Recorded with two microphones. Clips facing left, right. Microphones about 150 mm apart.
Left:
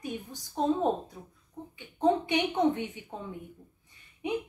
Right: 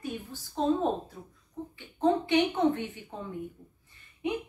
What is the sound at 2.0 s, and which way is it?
A woman's voice, 15° left (ahead or behind).